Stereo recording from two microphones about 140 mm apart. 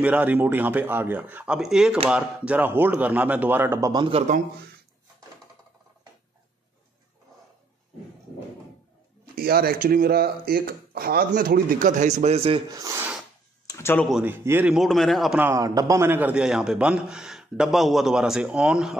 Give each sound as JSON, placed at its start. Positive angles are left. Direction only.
{"t": 0.0, "sound": "speech", "side_deg": -10}
{"t": 3.9, "sound": "speech", "side_deg": -35}
{"t": 9.3, "sound": "speech", "side_deg": -90}
{"t": 12.6, "sound": "speech", "side_deg": -25}
{"t": 13.7, "sound": "a sound", "side_deg": 20}
{"t": 14.2, "sound": "speech", "side_deg": -15}
{"t": 14.7, "sound": "a man's voice", "side_deg": 0}
{"t": 15.3, "sound": "a man's voice", "side_deg": -20}